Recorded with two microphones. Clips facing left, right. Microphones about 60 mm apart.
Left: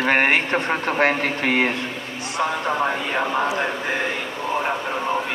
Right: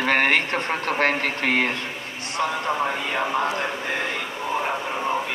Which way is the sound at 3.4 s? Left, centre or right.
Centre.